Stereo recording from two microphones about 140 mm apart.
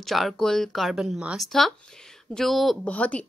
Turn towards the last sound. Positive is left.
turn(degrees=10)  # may be behind; listen again after turning